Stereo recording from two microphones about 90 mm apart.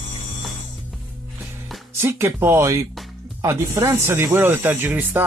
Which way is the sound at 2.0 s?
30° right (ahead or behind).